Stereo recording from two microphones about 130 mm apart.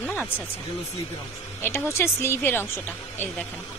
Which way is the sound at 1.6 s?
20° left (ahead or behind).